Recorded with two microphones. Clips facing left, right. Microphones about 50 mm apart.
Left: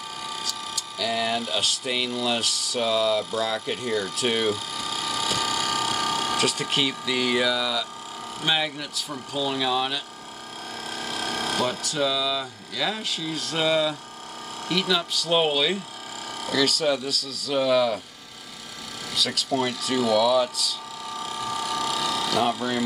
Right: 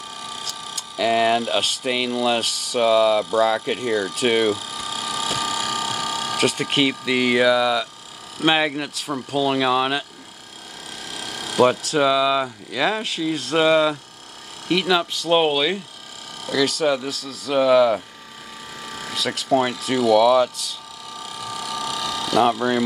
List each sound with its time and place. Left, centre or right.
0.5 s speech: right
4.2 s a sound: centre
6.9 s speech: right
8.5 s speech: right
11.0 s a sound: centre
11.9 s speech: right
14.7 s speech: centre
19.0 s speech: right
21.2 s a sound: centre
22.3 s speech: centre